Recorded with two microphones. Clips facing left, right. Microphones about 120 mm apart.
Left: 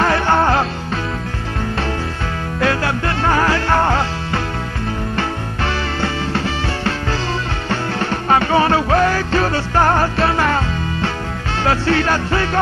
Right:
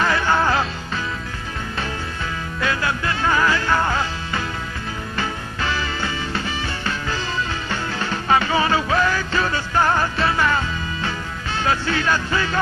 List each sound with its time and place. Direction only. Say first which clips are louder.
0.0 s music: left 4 dB; 60° left (ahead or behind)
2.6 s music: left 5 dB; 65° left (ahead or behind)
7.7 s music: left 7 dB; 60° left (ahead or behind)